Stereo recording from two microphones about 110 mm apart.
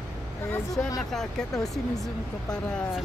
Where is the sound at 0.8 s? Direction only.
15° left (ahead or behind).